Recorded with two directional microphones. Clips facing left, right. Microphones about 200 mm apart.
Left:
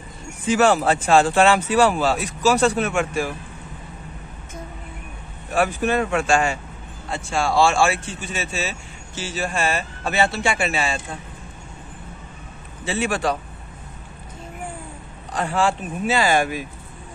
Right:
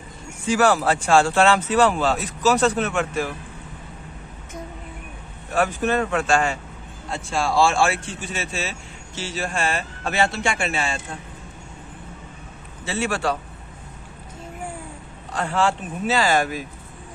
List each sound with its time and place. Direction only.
0.5 s speech: 20° left (ahead or behind)
5.5 s speech: 10° left (ahead or behind)
7.2 s speech: centre (ahead or behind)
12.8 s speech: 15° left (ahead or behind)
15.3 s speech: 15° left (ahead or behind)